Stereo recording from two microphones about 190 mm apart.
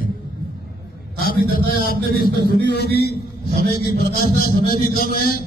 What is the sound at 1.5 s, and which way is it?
A man's voice, 50° left (ahead or behind).